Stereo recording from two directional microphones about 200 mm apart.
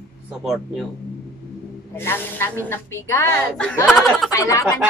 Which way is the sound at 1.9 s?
10° left (ahead or behind).